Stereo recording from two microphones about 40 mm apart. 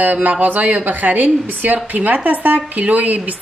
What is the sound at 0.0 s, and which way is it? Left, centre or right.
Speech, right.